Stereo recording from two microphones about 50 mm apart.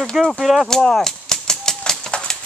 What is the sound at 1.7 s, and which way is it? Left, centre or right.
Typewriter, centre.